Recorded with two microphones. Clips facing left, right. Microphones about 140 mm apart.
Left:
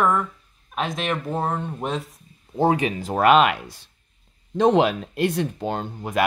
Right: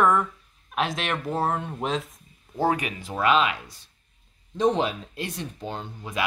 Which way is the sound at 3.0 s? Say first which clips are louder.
Left 6 dB; 50° left (ahead or behind).